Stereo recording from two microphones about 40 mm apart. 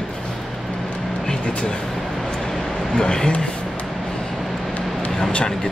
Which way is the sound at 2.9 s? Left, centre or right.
Centre.